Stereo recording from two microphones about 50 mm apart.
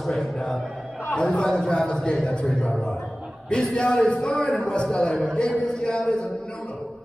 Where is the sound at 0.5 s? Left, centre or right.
Centre.